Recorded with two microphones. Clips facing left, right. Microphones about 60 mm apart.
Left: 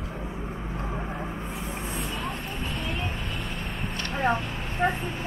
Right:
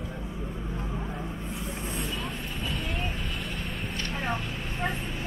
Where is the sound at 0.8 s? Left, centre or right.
Left.